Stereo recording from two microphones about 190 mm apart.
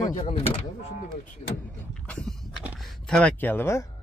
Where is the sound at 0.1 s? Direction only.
35° left (ahead or behind).